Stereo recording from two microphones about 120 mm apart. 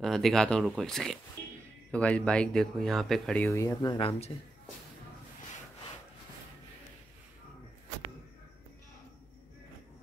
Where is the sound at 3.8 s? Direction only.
45° left (ahead or behind).